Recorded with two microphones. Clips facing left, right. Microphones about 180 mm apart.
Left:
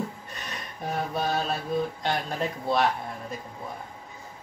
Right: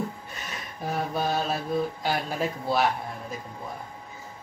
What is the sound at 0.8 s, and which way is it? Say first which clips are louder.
Speech: right 1 dB; centre (ahead or behind).